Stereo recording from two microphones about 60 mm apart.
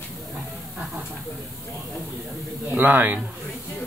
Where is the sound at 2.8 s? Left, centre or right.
Right.